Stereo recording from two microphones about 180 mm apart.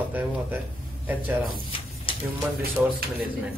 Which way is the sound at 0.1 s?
10° right (ahead or behind).